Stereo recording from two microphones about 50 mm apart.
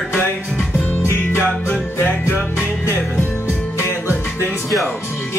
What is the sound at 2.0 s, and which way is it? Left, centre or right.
Music, left.